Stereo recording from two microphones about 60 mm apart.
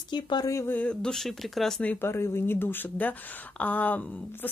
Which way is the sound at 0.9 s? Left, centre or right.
Centre.